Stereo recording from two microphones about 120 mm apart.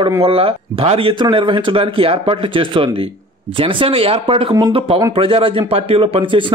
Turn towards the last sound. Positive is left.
turn(degrees=-45)  # may be behind; listen again after turning